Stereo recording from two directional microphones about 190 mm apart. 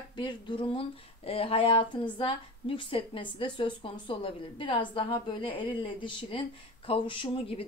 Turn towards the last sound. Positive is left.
turn(degrees=30)  # may be behind; listen again after turning